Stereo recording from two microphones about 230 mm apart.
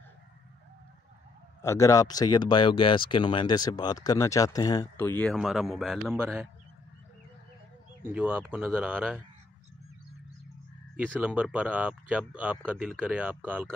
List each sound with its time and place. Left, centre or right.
1.6 s speech: centre
8.0 s speech: centre
11.0 s speech: centre